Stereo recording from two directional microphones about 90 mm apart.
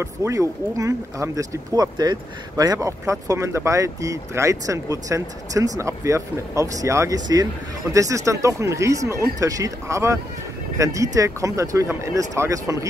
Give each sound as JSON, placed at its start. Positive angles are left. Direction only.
{"t": 0.0, "sound": "speech", "side_deg": -35}